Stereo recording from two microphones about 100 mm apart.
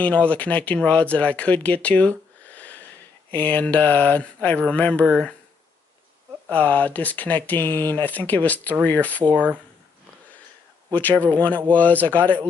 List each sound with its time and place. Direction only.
0.0 s speech: 15° left (ahead or behind)
6.5 s speech: 15° left (ahead or behind)
9.3 s speech: 15° right (ahead or behind)
10.9 s speech: 15° left (ahead or behind)